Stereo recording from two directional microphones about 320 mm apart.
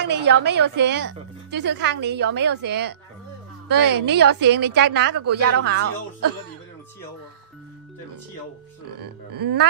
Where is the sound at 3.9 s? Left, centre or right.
Right.